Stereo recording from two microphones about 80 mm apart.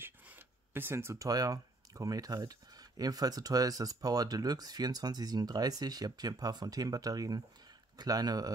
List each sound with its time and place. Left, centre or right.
0.7 s speech: right